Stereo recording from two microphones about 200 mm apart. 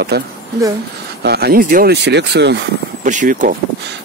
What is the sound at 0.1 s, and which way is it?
Speech, 55° right (ahead or behind).